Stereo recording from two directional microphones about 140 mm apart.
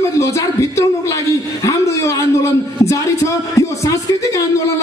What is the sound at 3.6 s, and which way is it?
Speech, 25° left (ahead or behind).